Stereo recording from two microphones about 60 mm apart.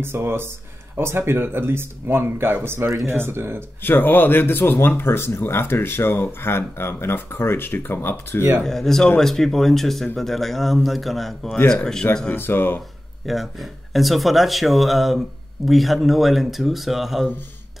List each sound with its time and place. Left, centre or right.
0.0 s speech: right
3.8 s speech: left
8.6 s speech: centre
12.4 s speech: left
13.2 s speech: centre